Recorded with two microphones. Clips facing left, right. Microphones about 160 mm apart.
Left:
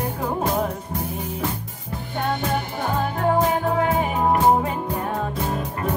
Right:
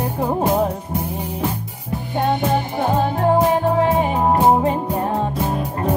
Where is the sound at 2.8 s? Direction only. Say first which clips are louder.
Right 4 dB; 35° right (ahead or behind).